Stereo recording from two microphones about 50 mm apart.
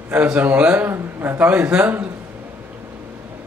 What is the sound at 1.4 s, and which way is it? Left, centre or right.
Speech, right.